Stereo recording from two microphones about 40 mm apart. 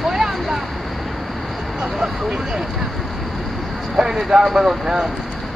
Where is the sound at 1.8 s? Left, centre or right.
Centre.